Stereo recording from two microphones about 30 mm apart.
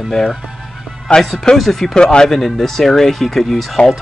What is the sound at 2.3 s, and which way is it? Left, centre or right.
Speech, centre.